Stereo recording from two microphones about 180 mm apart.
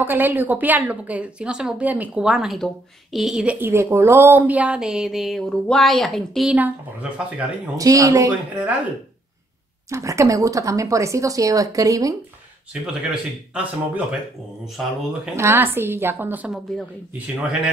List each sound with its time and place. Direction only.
0.0 s a woman's voice: 10° right (ahead or behind)
9.8 s a woman's voice: 15° right (ahead or behind)
12.8 s speech: 5° right (ahead or behind)
15.3 s a woman's voice: 15° right (ahead or behind)